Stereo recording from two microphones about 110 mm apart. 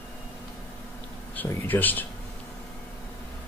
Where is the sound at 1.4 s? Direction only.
15° left (ahead or behind).